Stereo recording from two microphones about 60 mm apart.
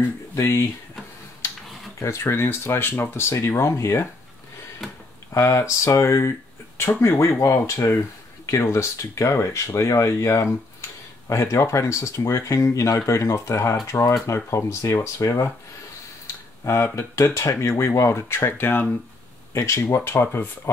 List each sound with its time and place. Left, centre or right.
2.0 s speech: left
4.8 s a sound: centre
5.3 s speech: left
6.8 s speech: left
7.2 s speech: left
16.6 s speech: left
18.6 s speech: left
19.5 s speech: left
20.1 s speech: left